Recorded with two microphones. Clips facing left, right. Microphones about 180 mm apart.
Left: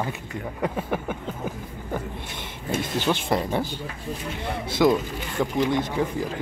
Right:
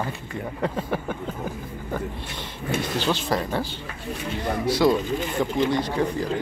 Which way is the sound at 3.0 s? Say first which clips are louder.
Left 1 dB; 20° left (ahead or behind).